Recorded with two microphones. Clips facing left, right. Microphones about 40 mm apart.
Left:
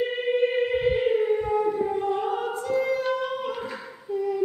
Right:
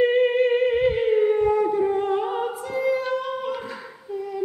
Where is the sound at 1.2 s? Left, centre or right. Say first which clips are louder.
Right 4 dB; right.